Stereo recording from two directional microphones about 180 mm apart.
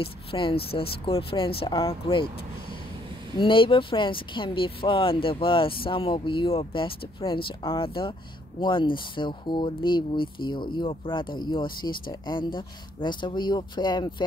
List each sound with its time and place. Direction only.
0.0 s speech: 30° left (ahead or behind)
3.3 s speech: 30° left (ahead or behind)